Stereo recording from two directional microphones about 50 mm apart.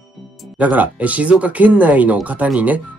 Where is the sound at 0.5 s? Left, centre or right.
Right.